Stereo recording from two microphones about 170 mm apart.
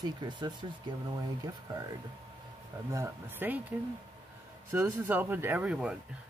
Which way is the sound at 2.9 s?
15° right (ahead or behind).